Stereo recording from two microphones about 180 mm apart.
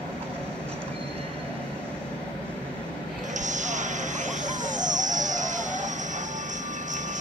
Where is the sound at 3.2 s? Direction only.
45° right (ahead or behind).